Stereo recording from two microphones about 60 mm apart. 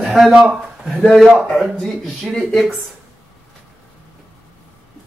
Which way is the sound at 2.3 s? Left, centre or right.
Centre.